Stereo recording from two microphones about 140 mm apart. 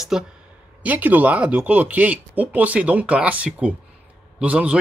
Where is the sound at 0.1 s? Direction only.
5° right (ahead or behind).